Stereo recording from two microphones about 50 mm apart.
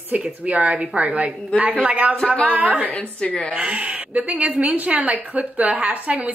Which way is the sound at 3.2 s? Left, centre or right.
Left.